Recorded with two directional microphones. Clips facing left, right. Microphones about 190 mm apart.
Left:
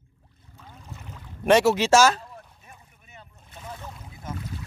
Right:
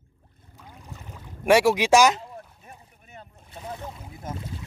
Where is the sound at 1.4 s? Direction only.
10° right (ahead or behind).